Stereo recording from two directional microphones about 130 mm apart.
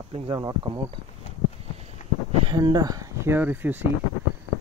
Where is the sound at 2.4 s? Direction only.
35° right (ahead or behind); by 3.8 s 15° right (ahead or behind).